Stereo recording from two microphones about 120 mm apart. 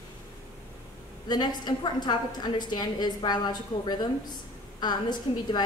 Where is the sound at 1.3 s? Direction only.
35° left (ahead or behind).